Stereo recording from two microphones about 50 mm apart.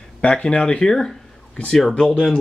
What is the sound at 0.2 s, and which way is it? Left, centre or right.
Speech, left.